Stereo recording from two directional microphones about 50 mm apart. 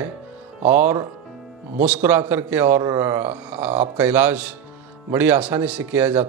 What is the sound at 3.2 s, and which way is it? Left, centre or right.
Speech, right.